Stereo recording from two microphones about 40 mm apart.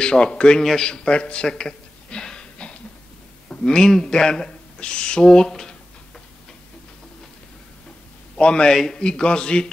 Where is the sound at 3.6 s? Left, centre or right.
Centre.